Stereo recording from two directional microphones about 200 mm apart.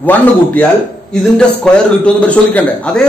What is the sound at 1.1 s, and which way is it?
A man's voice, 5° left (ahead or behind).